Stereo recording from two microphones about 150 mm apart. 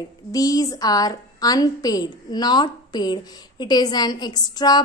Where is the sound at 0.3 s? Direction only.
25° left (ahead or behind).